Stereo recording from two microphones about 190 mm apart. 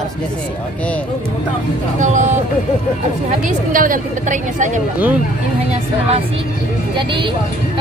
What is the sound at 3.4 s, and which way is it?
A woman's voice, 45° right (ahead or behind).